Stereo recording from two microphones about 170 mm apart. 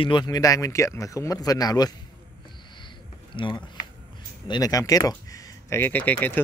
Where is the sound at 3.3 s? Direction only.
30° left (ahead or behind); by 6.4 s 10° left (ahead or behind).